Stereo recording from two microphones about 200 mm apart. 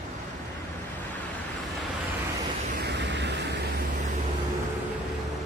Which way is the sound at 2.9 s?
60° right (ahead or behind).